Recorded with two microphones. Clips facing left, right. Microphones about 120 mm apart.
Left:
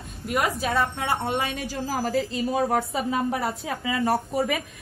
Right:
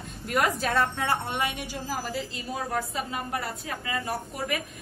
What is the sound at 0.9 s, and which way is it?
Speech, 25° left (ahead or behind).